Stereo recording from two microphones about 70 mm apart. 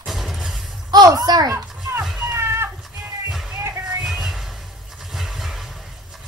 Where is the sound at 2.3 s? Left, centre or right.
Right.